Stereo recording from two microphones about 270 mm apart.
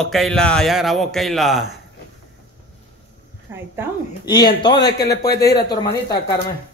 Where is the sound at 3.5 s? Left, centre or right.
Centre.